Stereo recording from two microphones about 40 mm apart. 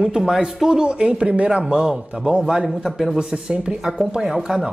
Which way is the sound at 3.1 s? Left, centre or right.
Right.